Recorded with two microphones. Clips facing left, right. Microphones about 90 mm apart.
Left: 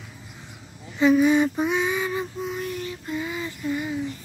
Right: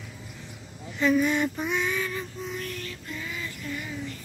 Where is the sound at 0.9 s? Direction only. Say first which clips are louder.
Left 6 dB; 10° left (ahead or behind).